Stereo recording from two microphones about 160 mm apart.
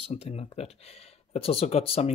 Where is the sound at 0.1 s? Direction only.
40° left (ahead or behind).